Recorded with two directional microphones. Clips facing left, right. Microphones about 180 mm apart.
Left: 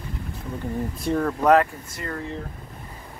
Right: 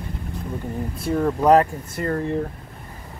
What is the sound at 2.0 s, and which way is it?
Speech, 45° right (ahead or behind).